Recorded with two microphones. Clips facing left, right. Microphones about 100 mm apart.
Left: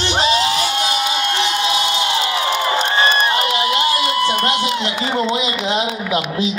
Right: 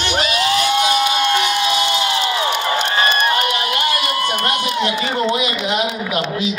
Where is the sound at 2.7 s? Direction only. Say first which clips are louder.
Left 1 dB; 30° left (ahead or behind).